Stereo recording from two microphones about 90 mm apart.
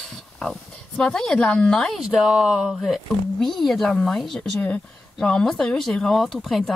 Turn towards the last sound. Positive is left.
turn(degrees=0)  # may be behind; listen again after turning